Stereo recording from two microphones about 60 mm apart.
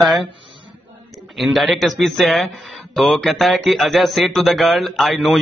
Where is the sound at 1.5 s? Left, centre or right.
Centre.